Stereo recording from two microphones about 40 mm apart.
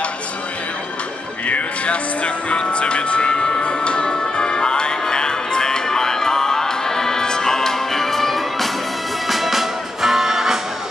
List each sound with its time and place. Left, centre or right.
1.5 s music: left; by 10.6 s centre